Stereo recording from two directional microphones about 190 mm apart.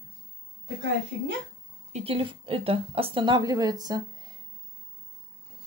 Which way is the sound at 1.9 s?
30° right (ahead or behind).